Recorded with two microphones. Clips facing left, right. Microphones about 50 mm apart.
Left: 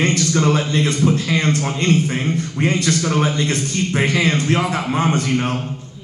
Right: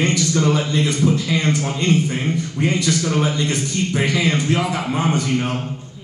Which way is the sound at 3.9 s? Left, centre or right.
Left.